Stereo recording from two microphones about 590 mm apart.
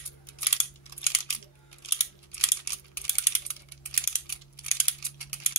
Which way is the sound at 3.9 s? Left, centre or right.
Left.